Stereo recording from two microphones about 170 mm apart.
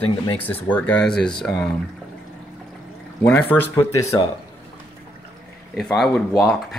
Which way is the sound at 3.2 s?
10° left (ahead or behind).